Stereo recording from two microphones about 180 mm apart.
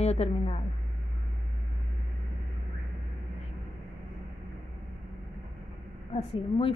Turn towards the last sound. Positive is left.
turn(degrees=30)  # may be behind; listen again after turning